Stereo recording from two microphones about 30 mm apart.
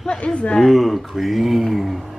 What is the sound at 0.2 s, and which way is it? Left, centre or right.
Speech, left.